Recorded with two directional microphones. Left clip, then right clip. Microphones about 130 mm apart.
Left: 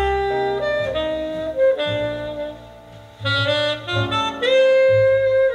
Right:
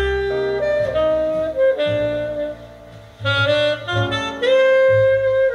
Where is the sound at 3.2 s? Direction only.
35° left (ahead or behind).